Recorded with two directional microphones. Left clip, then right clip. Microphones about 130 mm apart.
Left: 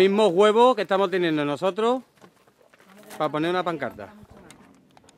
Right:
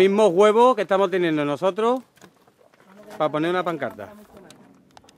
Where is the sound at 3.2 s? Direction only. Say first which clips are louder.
Right 2 dB; 10° left (ahead or behind).